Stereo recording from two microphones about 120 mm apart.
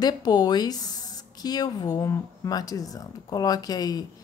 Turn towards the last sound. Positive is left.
turn(degrees=30)  # may be behind; listen again after turning